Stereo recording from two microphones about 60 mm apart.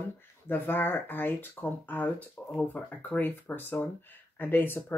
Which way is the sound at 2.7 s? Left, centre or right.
Left.